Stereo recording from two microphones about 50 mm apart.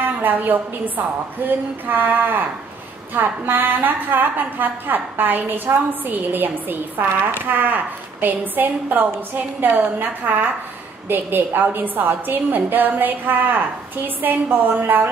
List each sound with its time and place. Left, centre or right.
0.2 s a woman's voice: right